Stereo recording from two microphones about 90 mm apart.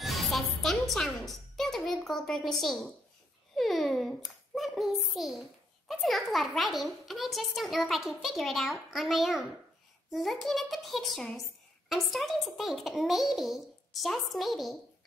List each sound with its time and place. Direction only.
0.0 s music: centre (ahead or behind)
3.5 s a child's voice: centre (ahead or behind)